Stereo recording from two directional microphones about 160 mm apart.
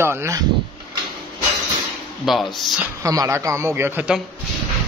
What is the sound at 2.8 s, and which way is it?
Speech, 20° right (ahead or behind).